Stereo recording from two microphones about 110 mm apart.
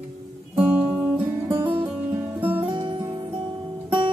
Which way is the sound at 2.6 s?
50° right (ahead or behind).